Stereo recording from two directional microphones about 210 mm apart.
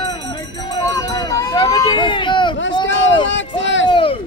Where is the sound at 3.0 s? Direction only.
60° left (ahead or behind).